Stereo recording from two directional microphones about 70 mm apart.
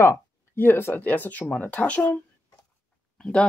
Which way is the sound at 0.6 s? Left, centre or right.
Left.